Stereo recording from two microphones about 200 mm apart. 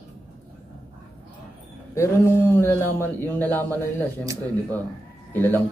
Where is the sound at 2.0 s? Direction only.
10° left (ahead or behind).